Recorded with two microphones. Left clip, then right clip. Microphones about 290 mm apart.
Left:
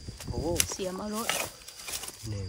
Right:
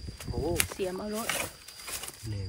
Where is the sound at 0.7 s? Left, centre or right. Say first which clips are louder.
Right 1 dB; centre.